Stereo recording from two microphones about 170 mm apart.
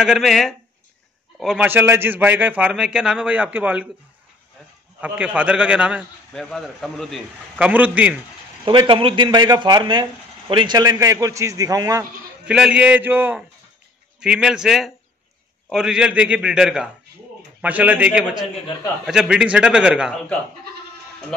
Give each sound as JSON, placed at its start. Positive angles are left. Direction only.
{"t": 0.0, "sound": "a man's voice", "side_deg": 0}
{"t": 5.0, "sound": "a man's voice", "side_deg": -5}
{"t": 8.6, "sound": "a man's voice", "side_deg": -30}
{"t": 12.4, "sound": "a man's voice", "side_deg": -5}